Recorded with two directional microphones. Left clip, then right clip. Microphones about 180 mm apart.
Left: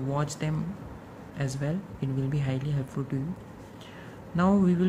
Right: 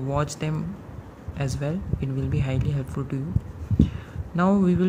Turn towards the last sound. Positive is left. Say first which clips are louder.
# right 3 dB
turn(degrees=-20)  # may be behind; listen again after turning